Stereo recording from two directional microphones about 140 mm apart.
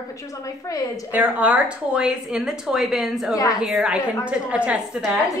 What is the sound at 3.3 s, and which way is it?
Speech, 25° left (ahead or behind).